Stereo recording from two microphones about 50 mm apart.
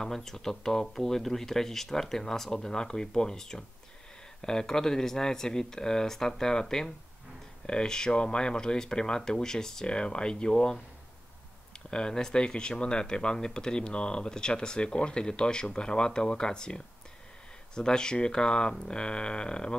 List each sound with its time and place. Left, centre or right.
0.0 s speech: centre
11.9 s speech: centre